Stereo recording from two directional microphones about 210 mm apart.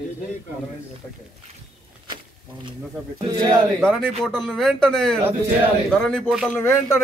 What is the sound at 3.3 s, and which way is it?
Speech, 20° right (ahead or behind).